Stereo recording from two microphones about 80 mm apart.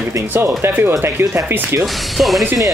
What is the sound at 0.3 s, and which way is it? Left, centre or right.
Speech, right.